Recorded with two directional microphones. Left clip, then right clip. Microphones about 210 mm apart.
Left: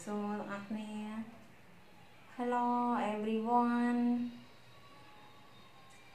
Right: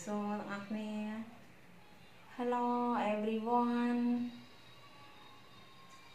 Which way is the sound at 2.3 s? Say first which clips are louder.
Left 1 dB; 5° left (ahead or behind).